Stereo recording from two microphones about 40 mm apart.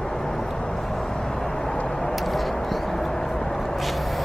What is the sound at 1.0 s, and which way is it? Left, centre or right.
Vehicle, centre.